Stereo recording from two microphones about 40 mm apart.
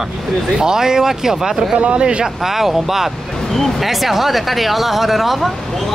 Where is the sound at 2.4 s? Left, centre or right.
Centre.